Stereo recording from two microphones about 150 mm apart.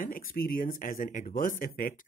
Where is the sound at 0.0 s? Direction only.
70° left (ahead or behind).